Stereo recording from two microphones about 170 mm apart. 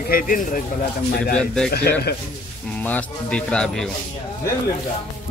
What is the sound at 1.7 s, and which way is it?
Speech, 70° left (ahead or behind).